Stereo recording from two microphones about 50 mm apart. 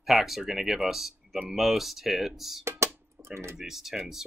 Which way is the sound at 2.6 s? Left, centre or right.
Right.